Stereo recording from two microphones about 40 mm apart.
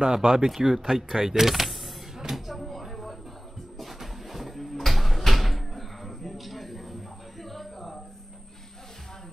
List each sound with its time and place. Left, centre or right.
0.0 s speech: centre
1.1 s power windows: centre
2.3 s a sound: centre